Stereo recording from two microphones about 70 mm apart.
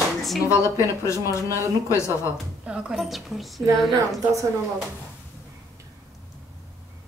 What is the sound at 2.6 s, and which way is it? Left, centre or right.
Speech, centre.